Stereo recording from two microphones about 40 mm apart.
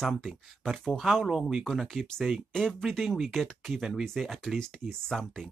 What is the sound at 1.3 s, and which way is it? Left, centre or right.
Speech, centre.